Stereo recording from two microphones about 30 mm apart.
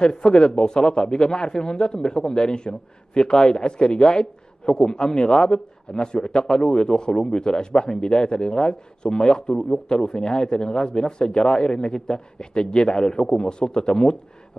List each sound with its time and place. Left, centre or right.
0.0 s a man's voice: left